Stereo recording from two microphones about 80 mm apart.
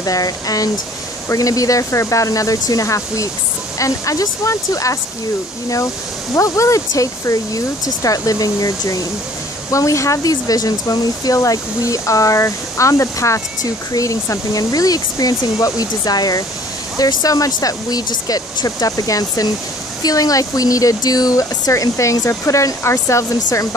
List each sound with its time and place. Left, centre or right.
0.0 s speech: left
6.3 s speech: left